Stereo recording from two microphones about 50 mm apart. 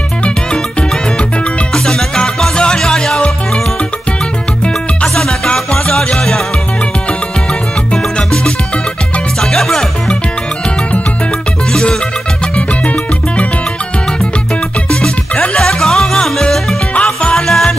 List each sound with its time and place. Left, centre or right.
1.7 s music: centre
5.0 s music: centre
9.4 s music: centre
11.7 s music: centre
14.9 s music: left
15.6 s music: centre
16.9 s music: left
17.4 s music: centre